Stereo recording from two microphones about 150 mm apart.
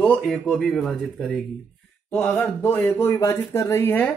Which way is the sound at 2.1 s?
15° left (ahead or behind).